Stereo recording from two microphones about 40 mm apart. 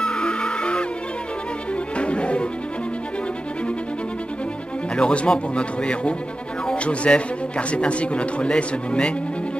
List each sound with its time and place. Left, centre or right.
0.0 s music: left
2.0 s music: left
4.9 s speech: left